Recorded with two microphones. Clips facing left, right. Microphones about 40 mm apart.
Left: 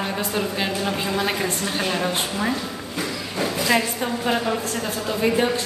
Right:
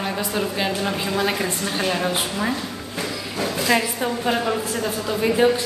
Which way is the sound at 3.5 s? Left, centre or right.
Centre.